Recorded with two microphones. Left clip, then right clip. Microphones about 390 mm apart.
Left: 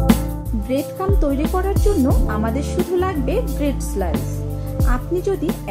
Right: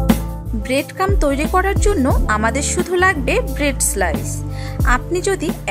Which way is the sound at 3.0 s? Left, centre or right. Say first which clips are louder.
Right 6 dB; right.